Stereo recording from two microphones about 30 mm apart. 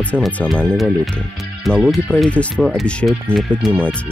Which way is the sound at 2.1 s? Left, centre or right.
Left.